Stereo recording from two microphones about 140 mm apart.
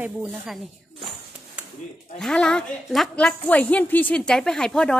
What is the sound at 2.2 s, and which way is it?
Speech, 5° left (ahead or behind).